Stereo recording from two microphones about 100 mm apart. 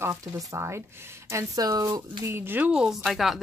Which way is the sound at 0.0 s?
30° right (ahead or behind).